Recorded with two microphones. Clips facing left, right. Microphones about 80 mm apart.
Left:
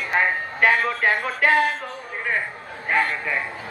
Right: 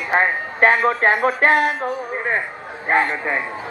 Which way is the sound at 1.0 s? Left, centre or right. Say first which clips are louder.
Right 4 dB; right.